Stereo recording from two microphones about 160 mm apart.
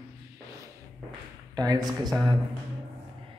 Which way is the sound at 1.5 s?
25° right (ahead or behind).